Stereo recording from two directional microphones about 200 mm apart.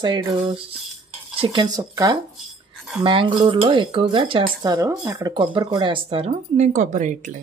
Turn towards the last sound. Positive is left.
turn(degrees=-40)  # may be behind; listen again after turning